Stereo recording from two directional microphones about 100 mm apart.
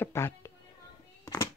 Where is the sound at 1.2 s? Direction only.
35° left (ahead or behind).